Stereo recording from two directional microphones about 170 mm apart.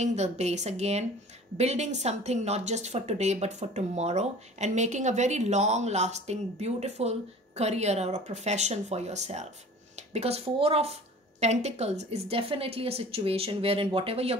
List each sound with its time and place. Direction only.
0.0 s speech: 40° right (ahead or behind)